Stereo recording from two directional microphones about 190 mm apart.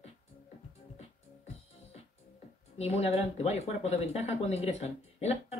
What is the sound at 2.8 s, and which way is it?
Speech, 35° left (ahead or behind).